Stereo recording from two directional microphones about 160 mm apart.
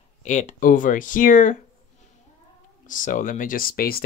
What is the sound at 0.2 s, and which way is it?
Speech, 45° left (ahead or behind).